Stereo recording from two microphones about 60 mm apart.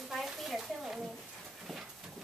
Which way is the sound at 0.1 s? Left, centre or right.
Centre.